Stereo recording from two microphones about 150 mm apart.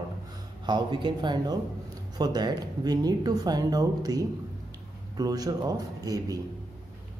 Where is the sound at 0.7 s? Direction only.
30° right (ahead or behind).